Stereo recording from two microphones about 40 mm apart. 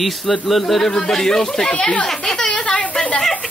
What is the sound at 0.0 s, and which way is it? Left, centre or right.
Speech, centre.